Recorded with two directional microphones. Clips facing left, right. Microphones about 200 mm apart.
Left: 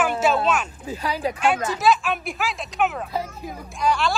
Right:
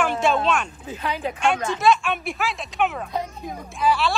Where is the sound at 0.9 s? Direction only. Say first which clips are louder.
Left 2 dB; 35° left (ahead or behind).